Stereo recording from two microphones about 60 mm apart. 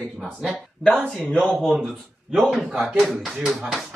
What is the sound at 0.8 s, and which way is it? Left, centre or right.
Speech, centre.